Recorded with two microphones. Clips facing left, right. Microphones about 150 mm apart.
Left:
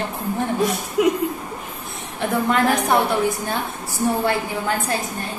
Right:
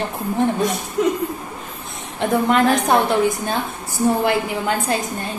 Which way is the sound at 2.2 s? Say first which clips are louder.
Right 3 dB; 20° right (ahead or behind).